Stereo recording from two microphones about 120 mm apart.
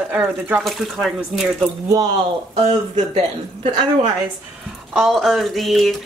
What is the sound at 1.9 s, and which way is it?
Speech, 25° right (ahead or behind).